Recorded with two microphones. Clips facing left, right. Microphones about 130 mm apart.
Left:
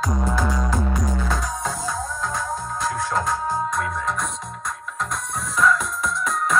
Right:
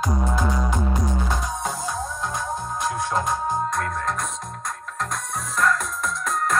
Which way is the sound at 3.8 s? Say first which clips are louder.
Left 1 dB; centre (ahead or behind).